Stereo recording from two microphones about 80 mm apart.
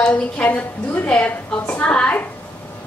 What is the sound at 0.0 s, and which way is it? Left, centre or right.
A woman's voice, centre.